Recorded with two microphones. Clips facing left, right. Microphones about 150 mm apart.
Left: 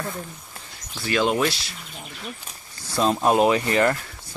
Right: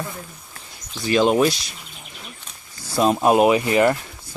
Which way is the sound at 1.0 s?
20° right (ahead or behind).